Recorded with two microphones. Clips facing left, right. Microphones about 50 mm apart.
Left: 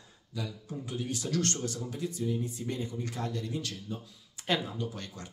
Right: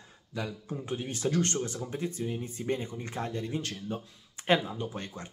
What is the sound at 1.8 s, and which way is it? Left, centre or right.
Speech, right.